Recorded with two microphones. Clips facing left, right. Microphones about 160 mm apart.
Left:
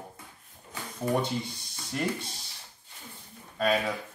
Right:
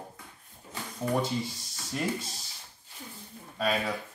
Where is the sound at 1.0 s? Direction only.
30° left (ahead or behind).